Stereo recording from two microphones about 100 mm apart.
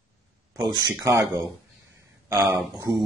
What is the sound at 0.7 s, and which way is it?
Speech, 40° right (ahead or behind).